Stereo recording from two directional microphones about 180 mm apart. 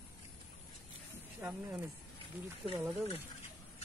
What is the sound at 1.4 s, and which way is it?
Speech, 15° right (ahead or behind).